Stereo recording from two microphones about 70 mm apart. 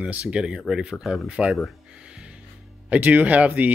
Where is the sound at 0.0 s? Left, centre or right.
Centre.